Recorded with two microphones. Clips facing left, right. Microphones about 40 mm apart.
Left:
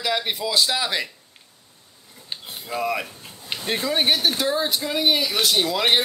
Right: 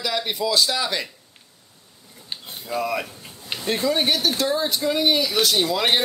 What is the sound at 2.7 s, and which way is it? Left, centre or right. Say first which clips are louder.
Speech: even; centre.